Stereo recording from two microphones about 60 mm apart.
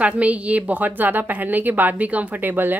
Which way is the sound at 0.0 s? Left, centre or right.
Right.